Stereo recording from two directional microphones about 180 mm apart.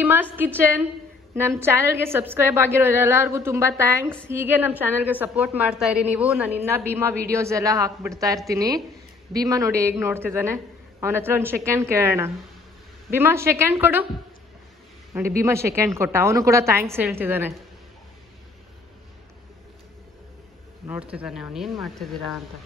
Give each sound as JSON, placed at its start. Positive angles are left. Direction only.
{"t": 0.0, "sound": "a sound", "side_deg": -10}
{"t": 0.6, "sound": "a woman's voice", "side_deg": -10}
{"t": 15.1, "sound": "a woman's voice", "side_deg": -15}
{"t": 20.9, "sound": "speech", "side_deg": -5}